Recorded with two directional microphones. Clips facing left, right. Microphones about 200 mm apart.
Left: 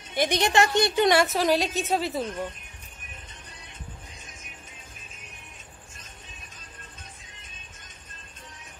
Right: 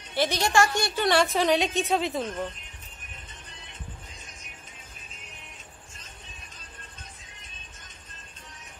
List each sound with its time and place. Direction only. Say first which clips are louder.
0.1 s a woman's voice: left 1 dB; 15° left (ahead or behind)
1.2 s a woman's voice: even; 5° left (ahead or behind)